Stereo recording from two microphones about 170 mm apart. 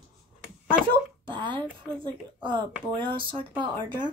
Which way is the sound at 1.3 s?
30° right (ahead or behind).